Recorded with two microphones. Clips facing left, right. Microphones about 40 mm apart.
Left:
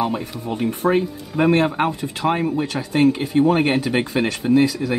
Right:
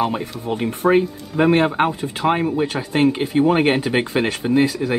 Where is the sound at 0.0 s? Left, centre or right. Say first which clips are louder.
Right 1 dB; centre.